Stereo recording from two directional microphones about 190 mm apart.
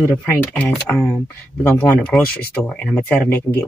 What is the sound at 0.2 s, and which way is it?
Speech, 5° left (ahead or behind).